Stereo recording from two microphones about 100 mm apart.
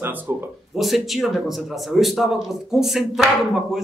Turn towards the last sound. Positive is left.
turn(degrees=-5)  # may be behind; listen again after turning